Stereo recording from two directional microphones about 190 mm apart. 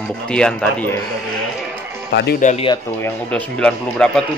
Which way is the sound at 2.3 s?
40° left (ahead or behind).